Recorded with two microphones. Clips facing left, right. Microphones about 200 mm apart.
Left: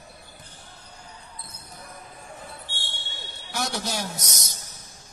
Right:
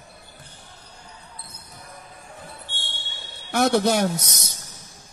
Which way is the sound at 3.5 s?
55° right (ahead or behind).